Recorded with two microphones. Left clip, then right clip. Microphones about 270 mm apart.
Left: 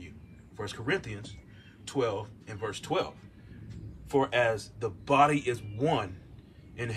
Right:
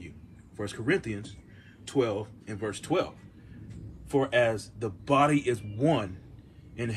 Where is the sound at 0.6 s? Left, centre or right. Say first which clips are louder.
Right 3 dB; centre.